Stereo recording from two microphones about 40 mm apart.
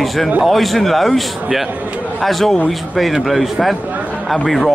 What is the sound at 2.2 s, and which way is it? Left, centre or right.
A man's voice, centre.